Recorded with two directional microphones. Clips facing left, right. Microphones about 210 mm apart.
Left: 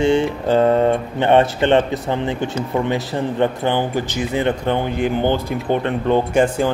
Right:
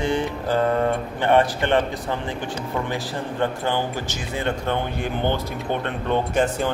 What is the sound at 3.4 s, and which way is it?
Speech, 20° left (ahead or behind).